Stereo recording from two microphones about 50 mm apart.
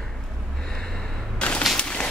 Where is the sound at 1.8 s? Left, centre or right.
Left.